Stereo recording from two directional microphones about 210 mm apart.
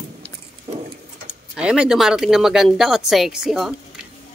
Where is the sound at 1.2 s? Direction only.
5° right (ahead or behind).